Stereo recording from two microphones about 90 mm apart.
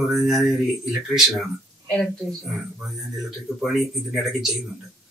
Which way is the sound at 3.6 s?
Centre (ahead or behind).